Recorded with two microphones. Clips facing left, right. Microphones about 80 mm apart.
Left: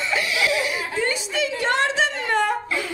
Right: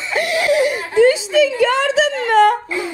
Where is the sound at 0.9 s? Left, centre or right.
Right.